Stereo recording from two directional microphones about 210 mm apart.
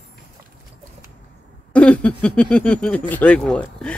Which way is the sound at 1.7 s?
5° left (ahead or behind).